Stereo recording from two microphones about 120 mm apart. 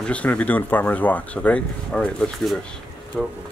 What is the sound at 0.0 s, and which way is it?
Speech, 10° left (ahead or behind).